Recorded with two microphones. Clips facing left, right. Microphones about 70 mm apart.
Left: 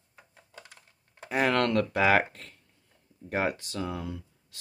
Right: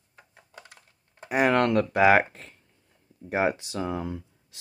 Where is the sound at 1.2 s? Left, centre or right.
Centre.